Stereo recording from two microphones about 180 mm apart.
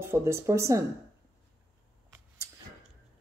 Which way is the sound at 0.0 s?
15° right (ahead or behind).